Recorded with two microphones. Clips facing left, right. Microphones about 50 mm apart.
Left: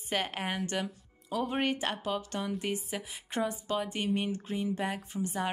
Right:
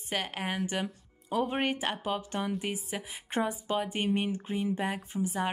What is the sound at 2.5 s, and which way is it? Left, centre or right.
Speech, centre.